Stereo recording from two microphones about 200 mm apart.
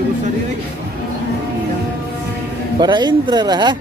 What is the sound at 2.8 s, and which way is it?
Speech, 20° right (ahead or behind).